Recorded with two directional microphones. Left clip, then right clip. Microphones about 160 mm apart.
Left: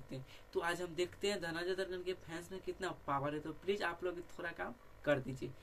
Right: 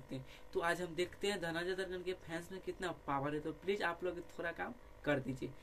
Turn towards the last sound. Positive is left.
turn(degrees=-10)  # may be behind; listen again after turning